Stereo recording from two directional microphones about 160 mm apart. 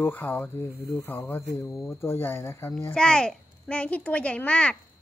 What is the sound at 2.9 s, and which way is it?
A woman's voice, 5° left (ahead or behind).